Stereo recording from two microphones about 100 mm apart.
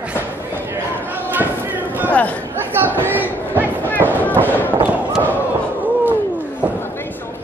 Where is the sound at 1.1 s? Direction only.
20° right (ahead or behind).